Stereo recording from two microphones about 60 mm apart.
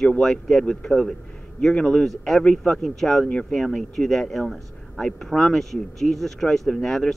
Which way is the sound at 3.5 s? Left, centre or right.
Centre.